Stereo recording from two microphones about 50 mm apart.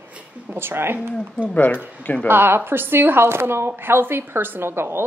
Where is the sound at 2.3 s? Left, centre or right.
Right.